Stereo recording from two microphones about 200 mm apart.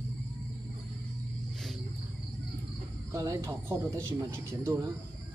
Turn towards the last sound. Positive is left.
turn(degrees=-15)  # may be behind; listen again after turning